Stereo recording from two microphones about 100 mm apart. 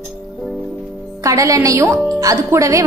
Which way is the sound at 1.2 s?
35° right (ahead or behind).